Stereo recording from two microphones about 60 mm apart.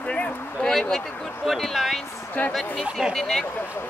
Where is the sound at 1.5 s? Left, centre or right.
Centre.